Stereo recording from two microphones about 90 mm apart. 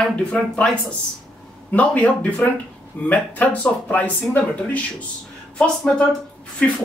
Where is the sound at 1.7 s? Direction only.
15° left (ahead or behind).